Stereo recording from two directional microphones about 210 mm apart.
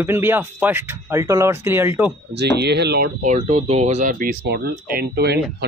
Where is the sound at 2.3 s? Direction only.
55° right (ahead or behind).